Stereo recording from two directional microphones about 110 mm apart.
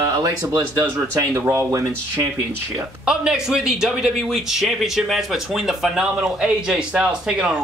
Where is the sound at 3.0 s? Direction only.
5° right (ahead or behind).